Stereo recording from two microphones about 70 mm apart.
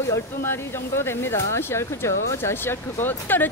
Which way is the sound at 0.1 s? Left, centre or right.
Left.